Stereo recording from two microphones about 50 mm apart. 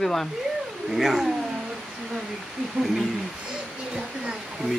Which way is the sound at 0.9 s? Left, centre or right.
Centre.